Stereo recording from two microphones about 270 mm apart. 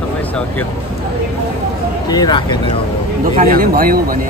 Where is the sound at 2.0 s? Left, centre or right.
Centre.